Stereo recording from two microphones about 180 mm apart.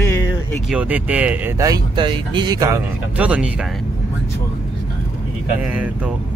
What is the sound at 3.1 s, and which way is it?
Speech, 5° right (ahead or behind).